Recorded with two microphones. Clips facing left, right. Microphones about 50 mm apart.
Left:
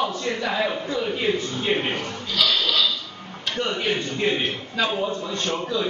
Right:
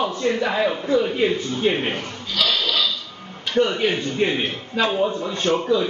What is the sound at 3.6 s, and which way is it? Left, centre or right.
A man's voice, right.